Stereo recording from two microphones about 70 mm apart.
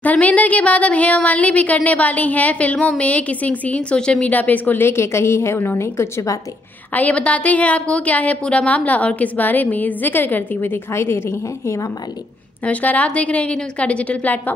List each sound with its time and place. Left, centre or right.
0.0 s a woman's voice: left
6.9 s a woman's voice: left
12.6 s a woman's voice: left